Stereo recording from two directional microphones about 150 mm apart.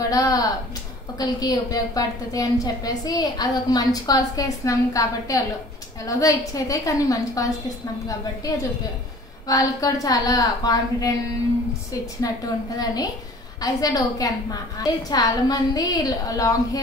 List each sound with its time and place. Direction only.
0.1 s a woman's voice: 25° left (ahead or behind)
12.2 s a woman's voice: 25° left (ahead or behind)